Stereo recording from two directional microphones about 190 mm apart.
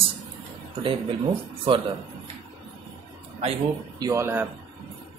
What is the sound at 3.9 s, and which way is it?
Speech, 15° right (ahead or behind).